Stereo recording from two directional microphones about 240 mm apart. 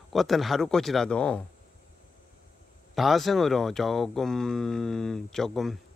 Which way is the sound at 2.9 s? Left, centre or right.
Centre.